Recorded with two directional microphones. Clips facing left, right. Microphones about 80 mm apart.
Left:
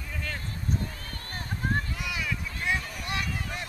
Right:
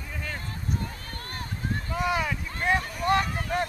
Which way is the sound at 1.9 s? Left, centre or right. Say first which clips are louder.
Right 7 dB; right.